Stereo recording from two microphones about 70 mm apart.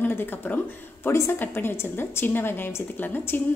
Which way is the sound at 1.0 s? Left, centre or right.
Left.